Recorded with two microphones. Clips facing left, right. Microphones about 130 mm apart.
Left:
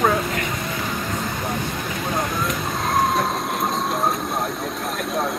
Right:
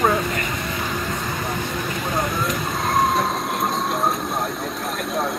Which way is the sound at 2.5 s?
Centre (ahead or behind).